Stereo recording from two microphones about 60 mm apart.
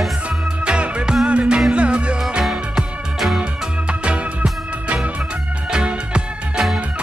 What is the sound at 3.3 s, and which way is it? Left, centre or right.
Music, centre.